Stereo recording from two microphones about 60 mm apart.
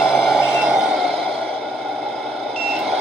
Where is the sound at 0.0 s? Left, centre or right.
Centre.